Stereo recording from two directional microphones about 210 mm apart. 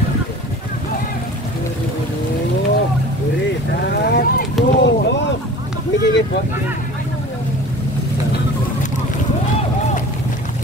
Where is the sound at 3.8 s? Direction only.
50° left (ahead or behind).